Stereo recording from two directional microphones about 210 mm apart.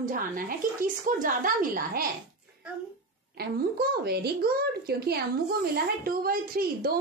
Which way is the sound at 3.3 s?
50° right (ahead or behind).